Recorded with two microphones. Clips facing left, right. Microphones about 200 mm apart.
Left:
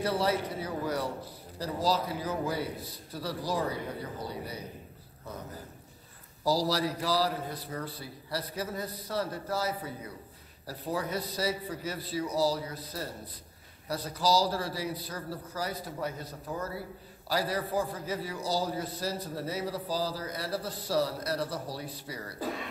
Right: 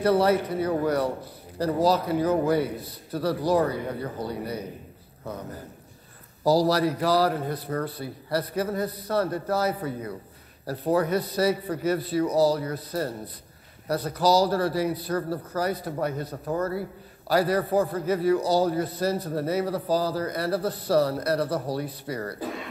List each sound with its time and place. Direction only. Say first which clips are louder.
0.0 s a man's voice: right 8 dB; 55° right (ahead or behind)
6.4 s a man's voice: right 7 dB; 60° right (ahead or behind)